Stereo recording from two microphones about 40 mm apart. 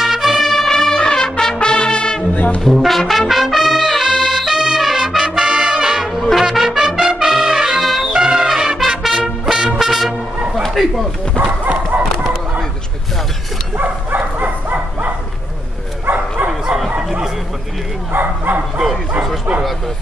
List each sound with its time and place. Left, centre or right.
0.0 s music: centre; by 2.2 s left
2.6 s brass instrument: centre
3.0 s trumpet: centre
7.0 s brass instrument: centre
7.5 s music: centre
7.8 s music: centre
8.1 s music: right
10.7 s a sound: centre
11.3 s bow-wow: right
13.8 s dog: right
16.4 s bow-wow: right
18.1 s bow-wow: right
19.1 s bow-wow: right